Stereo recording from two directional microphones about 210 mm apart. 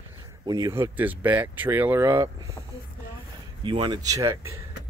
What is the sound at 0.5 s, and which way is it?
Speech, 15° right (ahead or behind).